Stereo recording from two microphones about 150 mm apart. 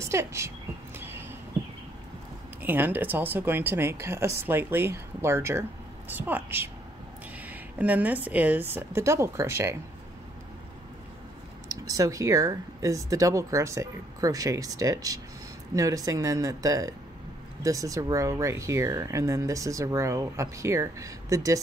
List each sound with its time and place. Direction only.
0.0 s speech: 20° right (ahead or behind)
0.9 s a sound: 15° right (ahead or behind)
2.6 s speech: 15° right (ahead or behind)
11.7 s speech: 25° right (ahead or behind)